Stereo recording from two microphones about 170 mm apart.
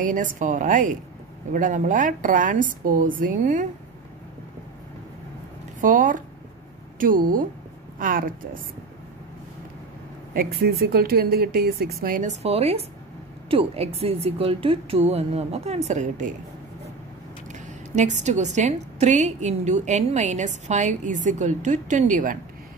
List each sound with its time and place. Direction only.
0.0 s a woman's voice: 50° right (ahead or behind)
5.8 s a woman's voice: 50° right (ahead or behind)
10.3 s a woman's voice: 60° right (ahead or behind); by 16.3 s 45° right (ahead or behind)
17.5 s a woman's voice: 45° right (ahead or behind)